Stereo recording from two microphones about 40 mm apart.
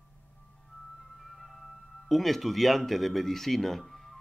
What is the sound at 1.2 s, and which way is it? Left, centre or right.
Music, centre.